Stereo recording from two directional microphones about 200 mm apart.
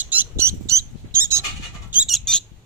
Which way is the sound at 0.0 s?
10° right (ahead or behind).